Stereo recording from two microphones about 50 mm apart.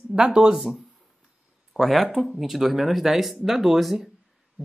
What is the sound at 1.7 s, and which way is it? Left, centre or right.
Speech, centre.